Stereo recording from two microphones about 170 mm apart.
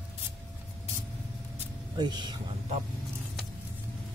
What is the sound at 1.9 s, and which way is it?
Speech, 25° right (ahead or behind).